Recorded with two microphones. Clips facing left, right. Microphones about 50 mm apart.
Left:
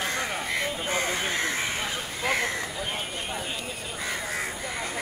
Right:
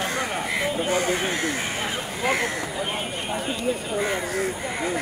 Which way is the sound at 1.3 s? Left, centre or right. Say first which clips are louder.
Right 2 dB; left.